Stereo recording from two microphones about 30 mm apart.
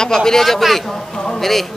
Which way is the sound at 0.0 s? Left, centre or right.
Centre.